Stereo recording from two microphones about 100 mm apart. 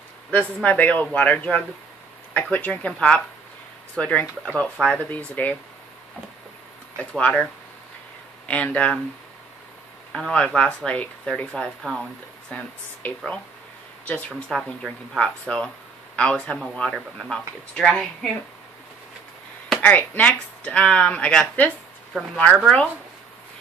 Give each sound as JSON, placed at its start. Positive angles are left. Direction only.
{"t": 0.7, "sound": "speech", "side_deg": 15}
{"t": 7.0, "sound": "speech", "side_deg": 10}
{"t": 8.5, "sound": "speech", "side_deg": 10}
{"t": 10.1, "sound": "speech", "side_deg": 5}
{"t": 14.5, "sound": "speech", "side_deg": 5}
{"t": 19.8, "sound": "speech", "side_deg": 15}